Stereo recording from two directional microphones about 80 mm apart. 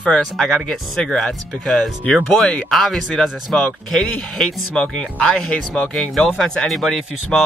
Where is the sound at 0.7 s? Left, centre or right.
Centre.